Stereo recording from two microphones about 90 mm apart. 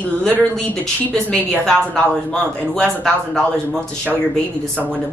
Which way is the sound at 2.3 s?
5° left (ahead or behind).